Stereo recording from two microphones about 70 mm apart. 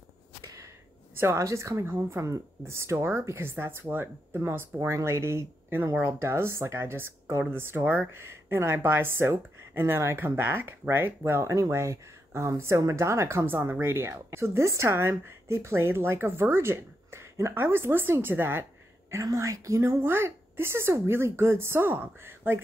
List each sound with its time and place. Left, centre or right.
0.4 s a sound: right
1.1 s a woman's voice: right
7.8 s speech: right
8.1 s speech: right
19.2 s speech: right
20.0 s speech: right